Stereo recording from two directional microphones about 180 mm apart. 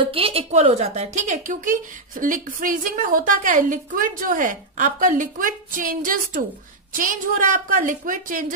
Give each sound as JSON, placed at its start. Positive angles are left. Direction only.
{"t": 0.0, "sound": "a woman's voice", "side_deg": -30}